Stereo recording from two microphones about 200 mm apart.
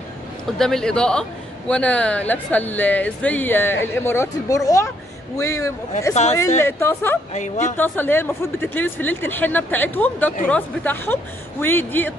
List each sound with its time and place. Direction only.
0.6 s a man's voice: 5° left (ahead or behind)
7.3 s speech: 35° left (ahead or behind)
7.7 s speech: 10° left (ahead or behind)